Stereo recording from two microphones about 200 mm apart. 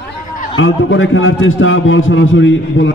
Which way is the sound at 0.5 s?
80° left.